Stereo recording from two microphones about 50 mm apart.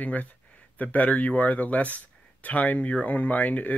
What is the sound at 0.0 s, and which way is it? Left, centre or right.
Speech, left.